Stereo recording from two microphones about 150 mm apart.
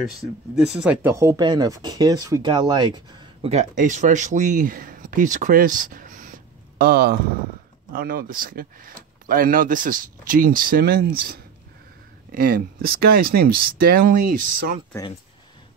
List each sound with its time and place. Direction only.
0.2 s speech: 5° right (ahead or behind); by 3.3 s 30° right (ahead or behind)
3.4 s speech: 50° right (ahead or behind); by 7.2 s 90° right
7.9 s speech: 75° right (ahead or behind)